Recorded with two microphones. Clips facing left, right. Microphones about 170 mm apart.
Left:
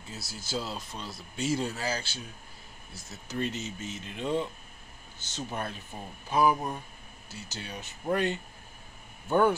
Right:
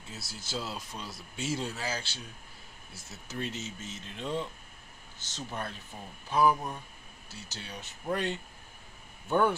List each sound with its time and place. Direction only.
0.0 s speech: centre (ahead or behind)